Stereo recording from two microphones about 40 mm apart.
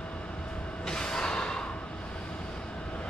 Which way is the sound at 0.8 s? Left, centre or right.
Centre.